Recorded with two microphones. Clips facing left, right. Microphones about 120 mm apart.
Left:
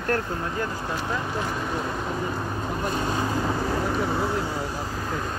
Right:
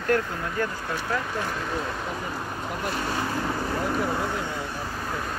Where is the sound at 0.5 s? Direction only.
25° left (ahead or behind).